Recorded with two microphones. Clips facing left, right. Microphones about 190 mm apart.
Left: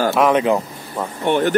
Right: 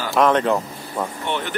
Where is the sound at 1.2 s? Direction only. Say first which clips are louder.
Left 14 dB; 45° left (ahead or behind).